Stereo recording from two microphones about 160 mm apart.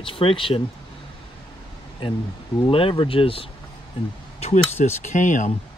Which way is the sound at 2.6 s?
35° left (ahead or behind).